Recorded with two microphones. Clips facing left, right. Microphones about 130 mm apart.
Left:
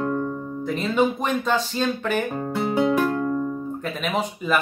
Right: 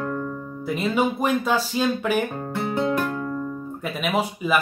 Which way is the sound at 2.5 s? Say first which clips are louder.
Left 4 dB; 15° left (ahead or behind).